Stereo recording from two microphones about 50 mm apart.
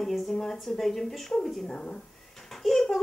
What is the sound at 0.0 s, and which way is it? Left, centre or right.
Speech, centre.